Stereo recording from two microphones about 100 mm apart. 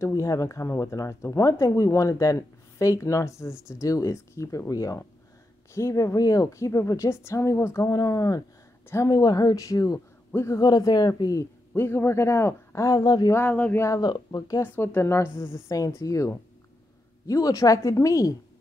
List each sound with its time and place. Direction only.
0.1 s speech: 35° left (ahead or behind)
10.6 s speech: 40° left (ahead or behind)
11.7 s speech: 20° left (ahead or behind); by 13.3 s 40° left (ahead or behind)
13.3 s speech: 20° left (ahead or behind)
13.8 s speech: 40° left (ahead or behind)
14.6 s speech: 20° left (ahead or behind)
17.3 s speech: 35° left (ahead or behind)